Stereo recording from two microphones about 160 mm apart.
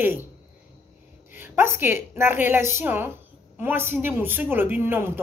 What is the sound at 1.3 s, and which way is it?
A woman's voice, 15° right (ahead or behind).